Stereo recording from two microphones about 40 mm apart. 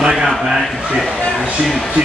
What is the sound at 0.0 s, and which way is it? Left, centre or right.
Speech, centre.